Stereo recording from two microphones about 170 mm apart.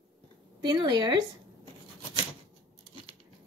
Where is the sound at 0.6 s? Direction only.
25° right (ahead or behind).